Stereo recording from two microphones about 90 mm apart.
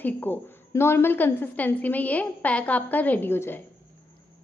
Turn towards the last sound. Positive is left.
turn(degrees=25)  # may be behind; listen again after turning